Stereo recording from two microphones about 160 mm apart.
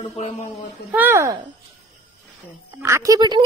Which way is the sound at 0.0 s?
40° left (ahead or behind).